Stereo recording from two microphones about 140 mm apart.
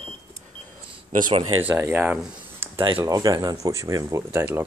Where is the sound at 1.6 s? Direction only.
15° right (ahead or behind).